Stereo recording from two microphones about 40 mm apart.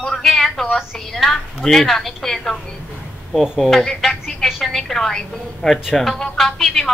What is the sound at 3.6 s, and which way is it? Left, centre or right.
Speech, centre.